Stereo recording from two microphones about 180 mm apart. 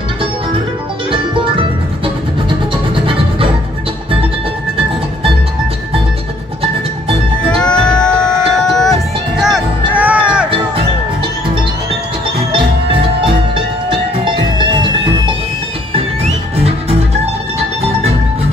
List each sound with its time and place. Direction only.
7.4 s music: 5° left (ahead or behind)
13.8 s music: 25° right (ahead or behind)
15.9 s music: 35° right (ahead or behind)